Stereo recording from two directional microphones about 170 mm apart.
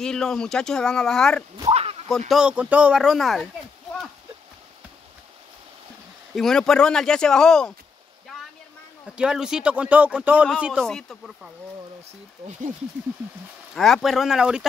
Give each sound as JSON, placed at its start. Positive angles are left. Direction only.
{"t": 0.0, "sound": "speech", "side_deg": 5}
{"t": 1.7, "sound": "a sound", "side_deg": -35}
{"t": 2.0, "sound": "speech", "side_deg": 0}
{"t": 6.3, "sound": "speech", "side_deg": 0}
{"t": 9.0, "sound": "speech", "side_deg": -5}
{"t": 13.7, "sound": "speech", "side_deg": 0}